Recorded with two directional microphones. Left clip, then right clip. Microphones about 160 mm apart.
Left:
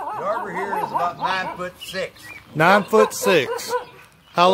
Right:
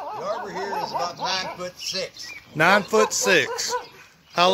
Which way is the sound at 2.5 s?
10° left (ahead or behind).